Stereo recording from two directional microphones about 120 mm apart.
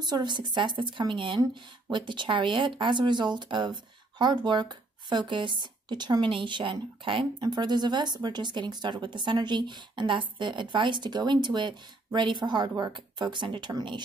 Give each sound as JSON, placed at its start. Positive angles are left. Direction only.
{"t": 0.0, "sound": "speech", "side_deg": -35}